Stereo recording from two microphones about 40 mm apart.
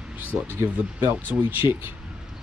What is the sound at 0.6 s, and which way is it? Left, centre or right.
Speech, right.